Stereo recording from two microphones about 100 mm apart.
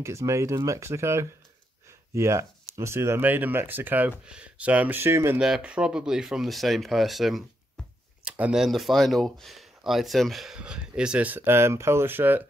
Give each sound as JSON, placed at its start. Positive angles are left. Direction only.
{"t": 0.0, "sound": "speech", "side_deg": -30}
{"t": 5.4, "sound": "speech", "side_deg": -10}
{"t": 8.2, "sound": "a sound", "side_deg": -10}
{"t": 8.6, "sound": "speech", "side_deg": 0}